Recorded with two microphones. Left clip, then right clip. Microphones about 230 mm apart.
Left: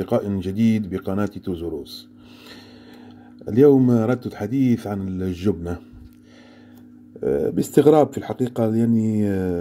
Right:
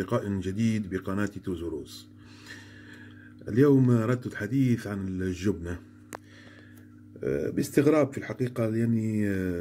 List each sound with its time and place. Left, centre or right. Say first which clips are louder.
0.0 s speech: left 7 dB; centre
3.4 s speech: left 8 dB; centre
7.2 s speech: left 8 dB; centre